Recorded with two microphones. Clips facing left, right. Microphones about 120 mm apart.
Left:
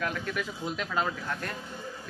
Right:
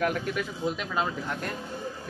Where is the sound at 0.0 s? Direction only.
20° right (ahead or behind).